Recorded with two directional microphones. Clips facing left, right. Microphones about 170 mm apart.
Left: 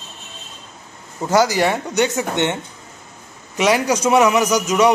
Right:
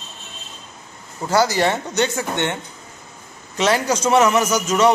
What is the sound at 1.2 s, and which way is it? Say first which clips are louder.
A man's voice: left 2 dB; 15° left (ahead or behind).